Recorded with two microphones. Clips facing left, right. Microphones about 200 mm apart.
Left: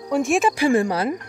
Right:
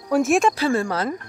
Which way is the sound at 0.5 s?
15° left (ahead or behind).